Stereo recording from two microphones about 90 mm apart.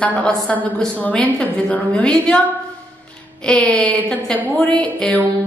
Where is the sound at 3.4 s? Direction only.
10° left (ahead or behind).